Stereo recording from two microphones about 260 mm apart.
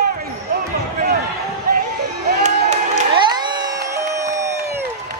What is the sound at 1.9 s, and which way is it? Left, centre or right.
Crowd, right.